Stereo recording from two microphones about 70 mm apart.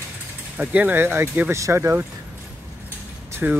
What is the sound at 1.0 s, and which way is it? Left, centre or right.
Speech, right.